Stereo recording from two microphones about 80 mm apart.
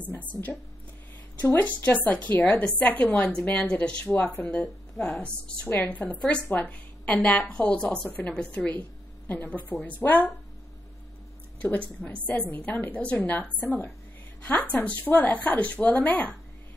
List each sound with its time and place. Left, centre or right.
1.4 s a woman's voice: left
11.6 s a woman's voice: left